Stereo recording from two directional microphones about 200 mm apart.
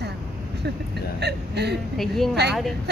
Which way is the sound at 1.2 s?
55° right (ahead or behind).